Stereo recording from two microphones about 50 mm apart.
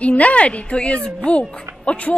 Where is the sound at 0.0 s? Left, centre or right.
Left.